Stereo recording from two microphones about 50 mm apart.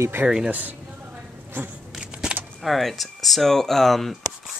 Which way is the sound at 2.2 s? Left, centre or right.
Centre.